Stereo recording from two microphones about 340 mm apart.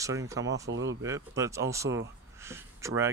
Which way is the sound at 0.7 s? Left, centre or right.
Right.